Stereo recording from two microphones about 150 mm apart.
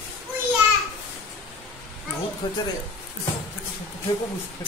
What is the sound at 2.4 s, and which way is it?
Speech, 30° left (ahead or behind).